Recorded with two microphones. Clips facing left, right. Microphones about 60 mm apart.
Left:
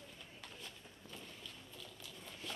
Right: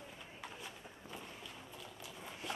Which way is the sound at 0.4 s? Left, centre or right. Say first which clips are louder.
Right 5 dB; centre.